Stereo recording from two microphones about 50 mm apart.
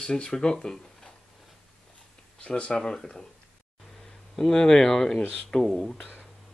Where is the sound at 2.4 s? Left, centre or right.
Centre.